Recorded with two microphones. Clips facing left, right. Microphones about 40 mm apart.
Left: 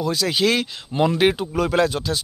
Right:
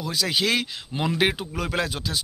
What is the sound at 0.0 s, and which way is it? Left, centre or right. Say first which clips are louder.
Speech: left 5 dB; centre.